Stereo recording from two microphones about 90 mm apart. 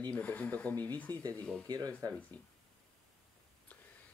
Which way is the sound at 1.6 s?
45° right (ahead or behind).